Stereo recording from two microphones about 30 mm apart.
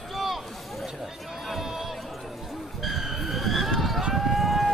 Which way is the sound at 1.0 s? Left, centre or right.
Centre.